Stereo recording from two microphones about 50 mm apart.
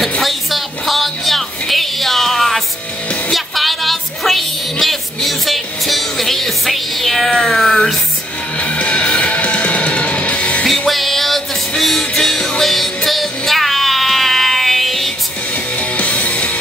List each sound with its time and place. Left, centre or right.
0.2 s music: centre
8.5 s music: left
10.9 s music: centre
16.0 s music: left